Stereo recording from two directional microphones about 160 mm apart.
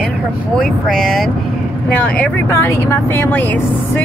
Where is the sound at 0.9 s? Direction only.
Centre (ahead or behind).